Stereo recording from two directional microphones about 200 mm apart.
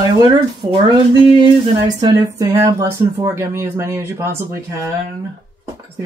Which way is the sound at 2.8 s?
15° right (ahead or behind).